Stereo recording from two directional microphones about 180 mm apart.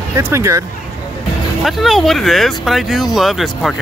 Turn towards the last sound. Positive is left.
turn(degrees=0)  # may be behind; listen again after turning